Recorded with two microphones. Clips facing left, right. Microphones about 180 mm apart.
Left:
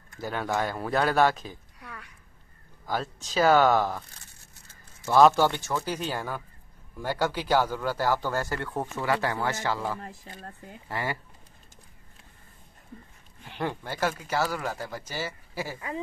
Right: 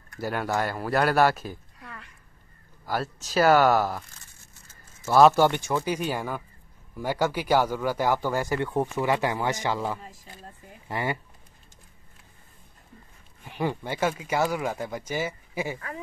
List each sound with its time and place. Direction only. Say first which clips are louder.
0.2 s speech: right 2 dB; 5° right (ahead or behind)
5.0 s speech: right 2 dB; 10° right (ahead or behind)
13.5 s speech: right 3 dB; 10° right (ahead or behind)